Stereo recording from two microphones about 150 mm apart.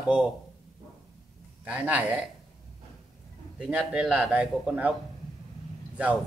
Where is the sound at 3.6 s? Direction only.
10° right (ahead or behind).